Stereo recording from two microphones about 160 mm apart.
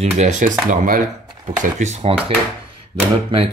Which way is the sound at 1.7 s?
40° right (ahead or behind).